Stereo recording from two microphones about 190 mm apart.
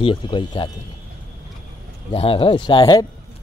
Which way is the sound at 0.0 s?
25° left (ahead or behind).